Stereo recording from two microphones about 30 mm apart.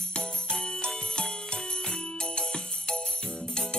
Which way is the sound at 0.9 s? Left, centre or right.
Left.